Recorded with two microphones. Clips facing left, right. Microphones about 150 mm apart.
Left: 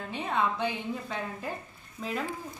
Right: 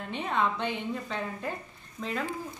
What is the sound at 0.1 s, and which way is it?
A woman's voice, 5° left (ahead or behind).